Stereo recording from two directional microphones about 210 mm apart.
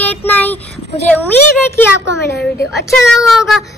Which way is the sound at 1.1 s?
10° left (ahead or behind).